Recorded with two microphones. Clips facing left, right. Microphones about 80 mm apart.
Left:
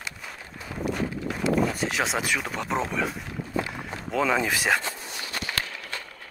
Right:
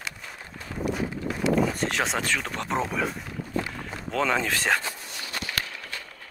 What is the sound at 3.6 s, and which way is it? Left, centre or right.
Walk, centre.